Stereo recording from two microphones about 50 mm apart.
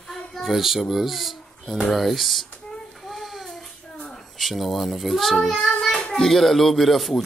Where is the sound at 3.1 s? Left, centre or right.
Centre.